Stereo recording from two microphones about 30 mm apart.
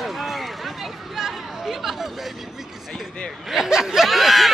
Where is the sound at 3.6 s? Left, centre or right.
Centre.